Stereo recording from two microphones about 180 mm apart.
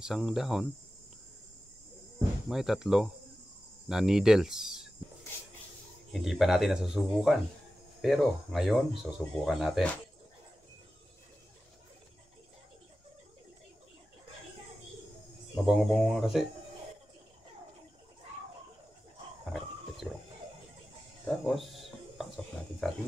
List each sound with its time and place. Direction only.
0.0 s speech: centre (ahead or behind)
2.1 s speech: 5° right (ahead or behind)
6.1 s speech: centre (ahead or behind)
15.5 s speech: centre (ahead or behind)
20.0 s a sound: centre (ahead or behind)
21.5 s a sound: centre (ahead or behind)